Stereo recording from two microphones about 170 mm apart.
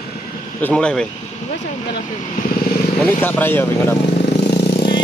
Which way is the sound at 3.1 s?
10° left (ahead or behind).